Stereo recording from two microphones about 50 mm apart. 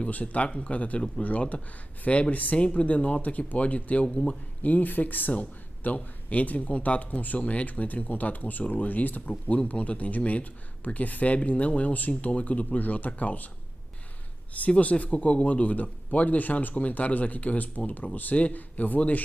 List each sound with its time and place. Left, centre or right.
0.1 s speech: left
4.6 s a man's voice: left
9.3 s a man's voice: left
14.8 s a man's voice: left